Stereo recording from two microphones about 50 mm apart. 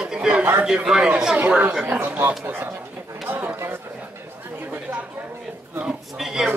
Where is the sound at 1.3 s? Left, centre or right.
Right.